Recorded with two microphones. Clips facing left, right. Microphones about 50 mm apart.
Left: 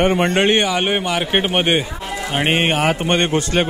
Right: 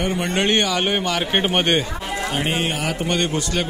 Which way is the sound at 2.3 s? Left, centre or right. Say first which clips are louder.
Left 6 dB; left.